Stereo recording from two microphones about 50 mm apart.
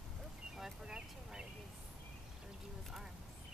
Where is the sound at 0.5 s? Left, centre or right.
Centre.